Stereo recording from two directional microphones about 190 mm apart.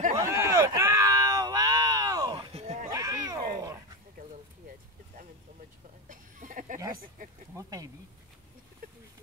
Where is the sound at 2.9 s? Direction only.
20° right (ahead or behind).